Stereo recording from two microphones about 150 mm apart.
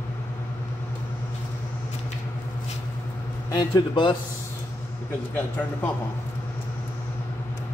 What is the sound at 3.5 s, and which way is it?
Speech, 25° left (ahead or behind).